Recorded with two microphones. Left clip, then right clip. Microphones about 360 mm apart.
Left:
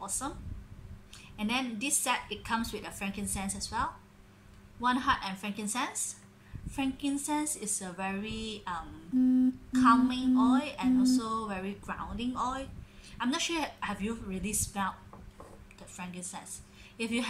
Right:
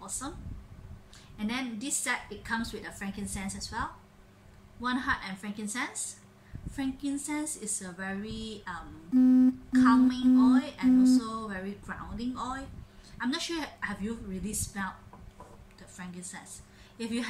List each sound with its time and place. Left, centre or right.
1.4 s a woman's voice: centre
4.8 s a woman's voice: centre
9.1 s a sound: right
9.8 s a woman's voice: centre
16.0 s a woman's voice: centre